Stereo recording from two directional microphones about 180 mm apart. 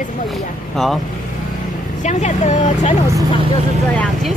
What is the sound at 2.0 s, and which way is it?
Speech, 40° left (ahead or behind).